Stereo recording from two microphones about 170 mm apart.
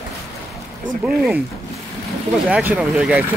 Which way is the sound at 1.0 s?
Centre (ahead or behind).